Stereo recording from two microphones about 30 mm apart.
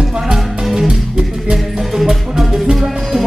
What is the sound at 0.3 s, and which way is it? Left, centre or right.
Music, centre.